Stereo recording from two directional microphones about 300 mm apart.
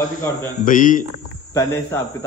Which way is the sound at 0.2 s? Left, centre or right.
Centre.